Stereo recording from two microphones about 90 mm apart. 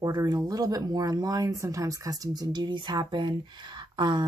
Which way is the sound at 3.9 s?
55° right (ahead or behind).